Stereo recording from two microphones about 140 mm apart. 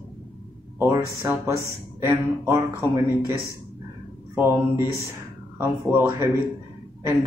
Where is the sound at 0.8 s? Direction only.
20° right (ahead or behind).